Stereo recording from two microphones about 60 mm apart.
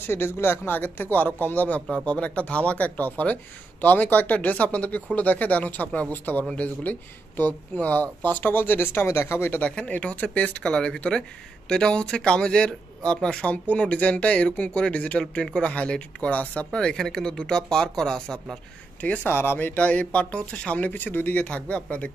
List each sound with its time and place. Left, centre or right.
0.0 s speech: left
9.0 s speech: left
9.6 s speech: left
16.7 s speech: centre
18.9 s speech: left
19.2 s speech: left